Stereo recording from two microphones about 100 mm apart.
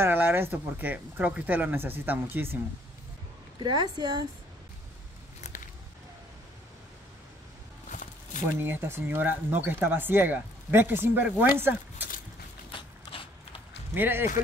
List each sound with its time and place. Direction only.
0.0 s speech: 20° right (ahead or behind)
3.5 s a woman's voice: 50° right (ahead or behind)
5.4 s a sound: 90° left
8.5 s speech: 20° right (ahead or behind)
12.7 s biting: 65° left (ahead or behind)
13.9 s speech: 20° right (ahead or behind)